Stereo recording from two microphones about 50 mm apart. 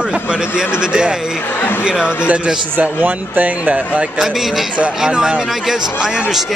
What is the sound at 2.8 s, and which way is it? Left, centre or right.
Speech, right.